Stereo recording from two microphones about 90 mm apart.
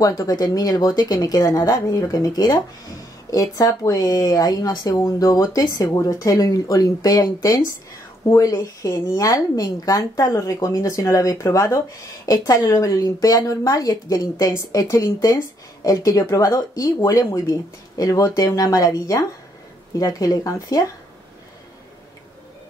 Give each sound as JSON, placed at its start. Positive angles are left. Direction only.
{"t": 0.2, "sound": "a woman's voice", "side_deg": 45}